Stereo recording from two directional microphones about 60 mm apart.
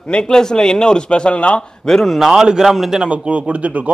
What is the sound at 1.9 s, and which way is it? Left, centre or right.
A man's voice, centre.